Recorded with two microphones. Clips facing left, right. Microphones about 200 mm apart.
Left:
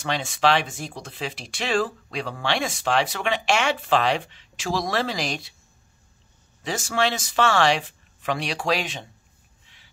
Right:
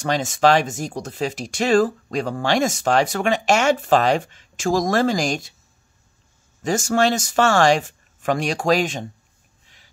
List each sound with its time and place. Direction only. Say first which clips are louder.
0.0 s speech: right 5 dB; 45° right (ahead or behind)
6.6 s speech: right 6 dB; 45° right (ahead or behind)